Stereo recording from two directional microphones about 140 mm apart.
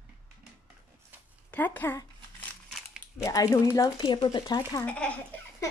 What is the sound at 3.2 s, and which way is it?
Speech, 20° left (ahead or behind).